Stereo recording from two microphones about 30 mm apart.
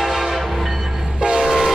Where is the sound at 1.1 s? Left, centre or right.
Right.